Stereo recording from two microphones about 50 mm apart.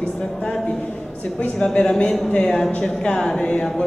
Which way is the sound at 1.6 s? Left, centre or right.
Centre.